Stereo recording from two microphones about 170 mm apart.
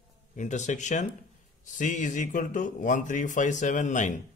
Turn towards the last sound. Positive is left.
turn(degrees=45)  # may be behind; listen again after turning